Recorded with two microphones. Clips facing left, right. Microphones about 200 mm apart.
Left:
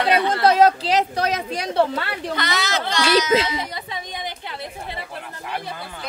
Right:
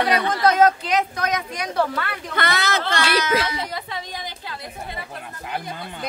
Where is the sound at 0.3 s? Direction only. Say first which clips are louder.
Left 1 dB; 30° left (ahead or behind).